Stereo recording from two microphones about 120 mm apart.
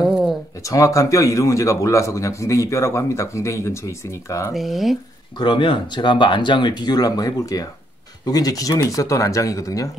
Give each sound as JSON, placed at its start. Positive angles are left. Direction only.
{"t": 0.0, "sound": "a sound", "side_deg": 0}
{"t": 0.7, "sound": "a man's voice", "side_deg": 25}
{"t": 4.6, "sound": "speech", "side_deg": 0}
{"t": 5.4, "sound": "a man's voice", "side_deg": 45}